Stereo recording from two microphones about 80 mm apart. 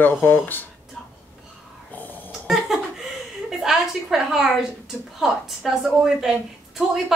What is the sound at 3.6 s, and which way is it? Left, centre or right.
A woman's voice, centre.